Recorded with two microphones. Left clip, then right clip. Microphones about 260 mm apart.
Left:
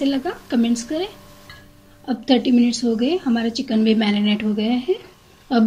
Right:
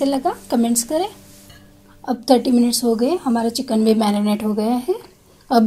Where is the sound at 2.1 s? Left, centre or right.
Centre.